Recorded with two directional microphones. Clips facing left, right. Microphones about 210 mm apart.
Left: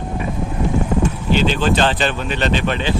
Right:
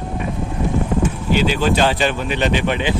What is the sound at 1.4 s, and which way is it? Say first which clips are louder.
Speech: even; 10° right (ahead or behind).